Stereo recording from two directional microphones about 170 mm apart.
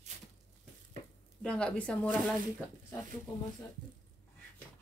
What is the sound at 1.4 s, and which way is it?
Speech, 5° left (ahead or behind).